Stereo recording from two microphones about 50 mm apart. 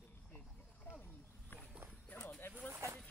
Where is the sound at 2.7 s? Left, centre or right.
Right.